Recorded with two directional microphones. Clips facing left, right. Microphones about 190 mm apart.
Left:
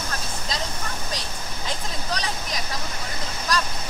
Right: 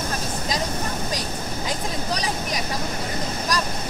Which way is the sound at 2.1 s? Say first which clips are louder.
Right 1 dB; 10° right (ahead or behind).